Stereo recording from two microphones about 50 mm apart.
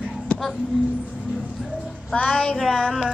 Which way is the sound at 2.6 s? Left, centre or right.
Centre.